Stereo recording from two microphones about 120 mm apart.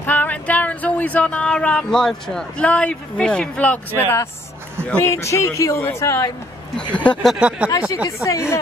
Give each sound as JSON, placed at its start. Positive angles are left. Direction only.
{"t": 0.0, "sound": "speech", "side_deg": 15}
{"t": 5.0, "sound": "a man's voice", "side_deg": 25}
{"t": 6.9, "sound": "speech", "side_deg": 10}
{"t": 7.3, "sound": "speech", "side_deg": -10}
{"t": 8.2, "sound": "a man's voice", "side_deg": 25}